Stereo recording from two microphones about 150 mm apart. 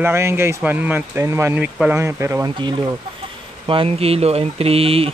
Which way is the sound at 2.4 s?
30° right (ahead or behind).